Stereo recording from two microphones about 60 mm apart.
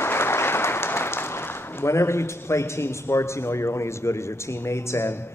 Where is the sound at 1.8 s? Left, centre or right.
Left.